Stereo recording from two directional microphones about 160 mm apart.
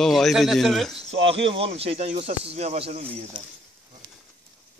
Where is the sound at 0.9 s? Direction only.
35° right (ahead or behind).